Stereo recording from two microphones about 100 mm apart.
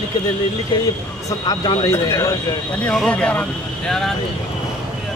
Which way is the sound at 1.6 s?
50° left (ahead or behind).